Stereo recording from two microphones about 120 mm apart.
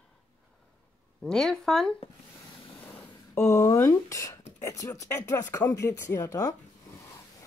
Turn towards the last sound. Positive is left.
turn(degrees=30)  # may be behind; listen again after turning